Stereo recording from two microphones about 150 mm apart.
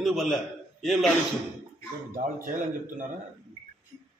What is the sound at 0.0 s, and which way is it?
A man's voice, centre (ahead or behind).